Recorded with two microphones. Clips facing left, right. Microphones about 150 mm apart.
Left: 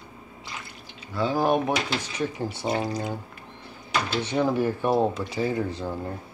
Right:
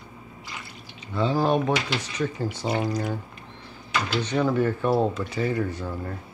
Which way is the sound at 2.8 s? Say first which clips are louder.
Right 2 dB; 30° left (ahead or behind).